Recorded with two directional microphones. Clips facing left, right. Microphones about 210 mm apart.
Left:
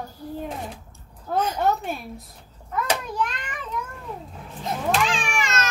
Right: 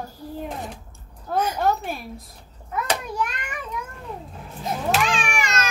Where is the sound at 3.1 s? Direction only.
10° right (ahead or behind).